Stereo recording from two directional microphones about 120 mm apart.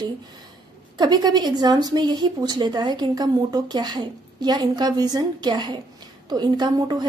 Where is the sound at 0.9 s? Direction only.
35° right (ahead or behind).